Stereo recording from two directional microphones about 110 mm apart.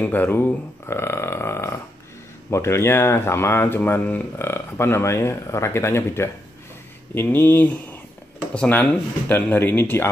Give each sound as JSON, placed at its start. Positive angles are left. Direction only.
{"t": 0.0, "sound": "speech", "side_deg": 15}